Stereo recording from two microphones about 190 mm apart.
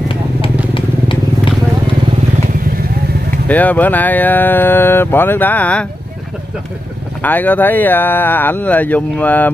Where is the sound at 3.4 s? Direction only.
10° left (ahead or behind).